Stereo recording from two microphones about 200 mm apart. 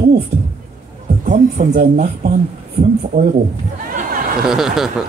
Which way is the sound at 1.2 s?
40° right (ahead or behind).